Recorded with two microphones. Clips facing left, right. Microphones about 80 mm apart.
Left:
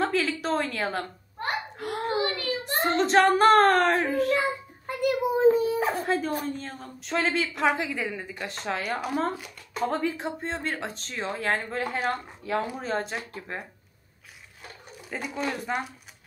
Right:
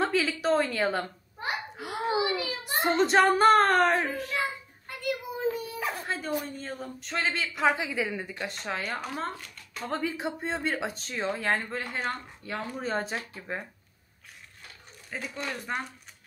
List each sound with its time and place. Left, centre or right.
0.0 s a child's voice: centre
5.4 s a sound: left
6.0 s a woman's voice: centre
15.0 s speech: centre